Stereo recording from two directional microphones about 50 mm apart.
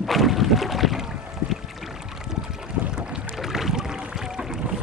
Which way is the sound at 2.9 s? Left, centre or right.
Centre.